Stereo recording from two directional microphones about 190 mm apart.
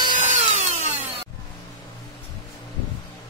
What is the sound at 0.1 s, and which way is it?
Tools, 35° right (ahead or behind).